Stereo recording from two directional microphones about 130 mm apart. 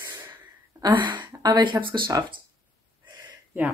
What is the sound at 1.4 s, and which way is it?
Speech, 35° right (ahead or behind).